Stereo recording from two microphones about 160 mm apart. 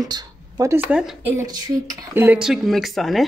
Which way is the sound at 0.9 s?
5° right (ahead or behind).